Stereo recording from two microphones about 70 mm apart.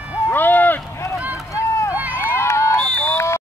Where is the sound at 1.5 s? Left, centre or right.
Left.